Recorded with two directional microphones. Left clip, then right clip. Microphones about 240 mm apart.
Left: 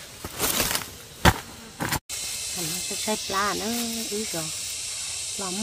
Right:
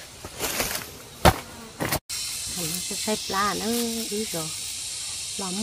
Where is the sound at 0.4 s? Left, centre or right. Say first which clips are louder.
Left 2 dB; left.